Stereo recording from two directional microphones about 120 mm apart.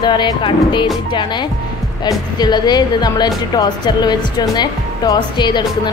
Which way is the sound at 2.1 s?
35° left (ahead or behind).